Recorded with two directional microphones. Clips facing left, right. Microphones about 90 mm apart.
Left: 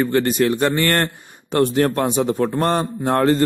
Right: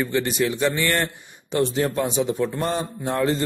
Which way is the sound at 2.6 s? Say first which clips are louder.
Left 6 dB; 70° left (ahead or behind).